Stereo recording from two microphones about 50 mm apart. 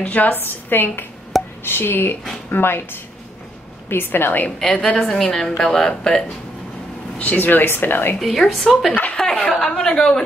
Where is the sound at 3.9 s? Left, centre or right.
Left.